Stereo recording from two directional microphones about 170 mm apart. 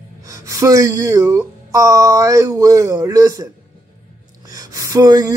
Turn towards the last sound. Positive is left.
turn(degrees=-20)  # may be behind; listen again after turning